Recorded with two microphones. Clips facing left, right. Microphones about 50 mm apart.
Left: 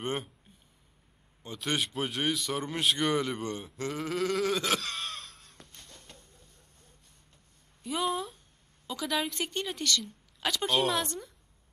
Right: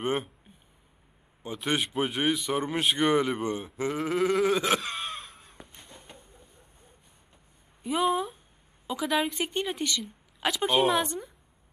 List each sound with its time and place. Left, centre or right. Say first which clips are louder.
0.0 s speech: right 5 dB; centre
1.4 s speech: right 3 dB; centre
3.6 s gasp: right 5 dB; centre
7.8 s a sound: right 5 dB; centre
8.8 s a woman's voice: right 4 dB; centre